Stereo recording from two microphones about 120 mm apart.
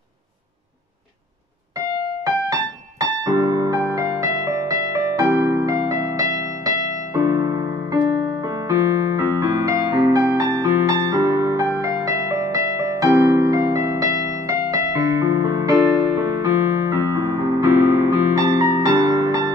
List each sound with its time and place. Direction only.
2.2 s music: 30° right (ahead or behind)
7.1 s keyboard: 30° right (ahead or behind)